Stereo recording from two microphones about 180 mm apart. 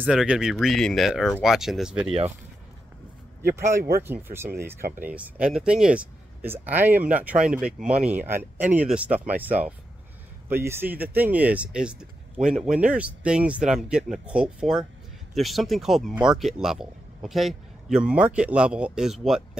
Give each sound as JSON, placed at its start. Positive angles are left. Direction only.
{"t": 0.0, "sound": "speech", "side_deg": -5}
{"t": 3.5, "sound": "speech", "side_deg": -15}